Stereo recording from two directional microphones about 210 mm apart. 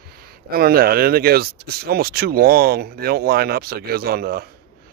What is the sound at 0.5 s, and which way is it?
Speech, 45° right (ahead or behind).